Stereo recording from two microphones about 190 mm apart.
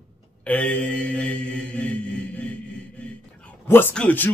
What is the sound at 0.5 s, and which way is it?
Mantra, 5° left (ahead or behind).